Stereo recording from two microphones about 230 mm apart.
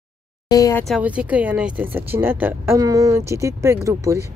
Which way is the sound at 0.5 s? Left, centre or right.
Centre.